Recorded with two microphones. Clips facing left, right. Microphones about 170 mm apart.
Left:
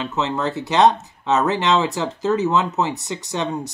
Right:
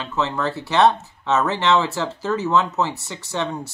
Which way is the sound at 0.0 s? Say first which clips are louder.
Left 1 dB; 20° left (ahead or behind).